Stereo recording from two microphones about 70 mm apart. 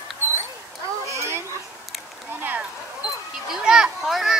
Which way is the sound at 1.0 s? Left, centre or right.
Right.